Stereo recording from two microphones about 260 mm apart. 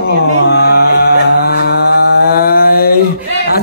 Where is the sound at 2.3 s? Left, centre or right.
Left.